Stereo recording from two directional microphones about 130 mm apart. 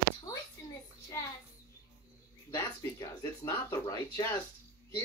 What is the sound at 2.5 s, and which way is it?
Speech, 20° left (ahead or behind).